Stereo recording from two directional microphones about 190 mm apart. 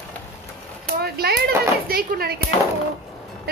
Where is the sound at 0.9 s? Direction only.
55° right (ahead or behind).